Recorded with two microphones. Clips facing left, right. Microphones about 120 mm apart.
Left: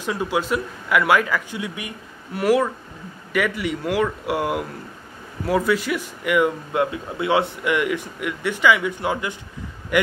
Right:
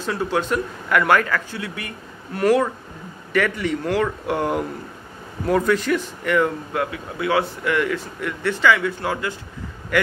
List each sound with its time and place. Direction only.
0.0 s speech: 15° left (ahead or behind)